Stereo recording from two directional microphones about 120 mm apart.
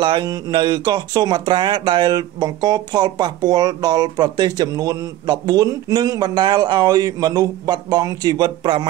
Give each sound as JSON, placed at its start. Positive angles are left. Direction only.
{"t": 0.0, "sound": "speech", "side_deg": -40}